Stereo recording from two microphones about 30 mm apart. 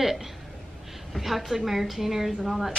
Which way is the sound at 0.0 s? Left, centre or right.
Centre.